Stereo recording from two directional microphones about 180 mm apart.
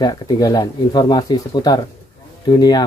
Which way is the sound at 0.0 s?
20° left (ahead or behind).